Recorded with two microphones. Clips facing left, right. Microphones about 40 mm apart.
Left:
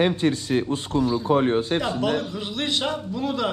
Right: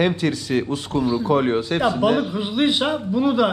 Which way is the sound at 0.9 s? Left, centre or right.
Right.